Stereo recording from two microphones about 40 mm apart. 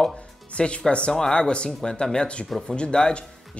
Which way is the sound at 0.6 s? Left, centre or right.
Left.